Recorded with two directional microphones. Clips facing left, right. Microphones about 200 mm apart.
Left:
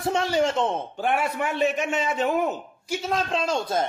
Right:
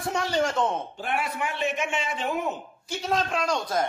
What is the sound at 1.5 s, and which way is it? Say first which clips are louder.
A man's voice: left 5 dB; 40° left (ahead or behind).